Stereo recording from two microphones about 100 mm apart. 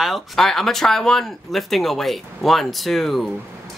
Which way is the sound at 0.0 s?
Centre (ahead or behind).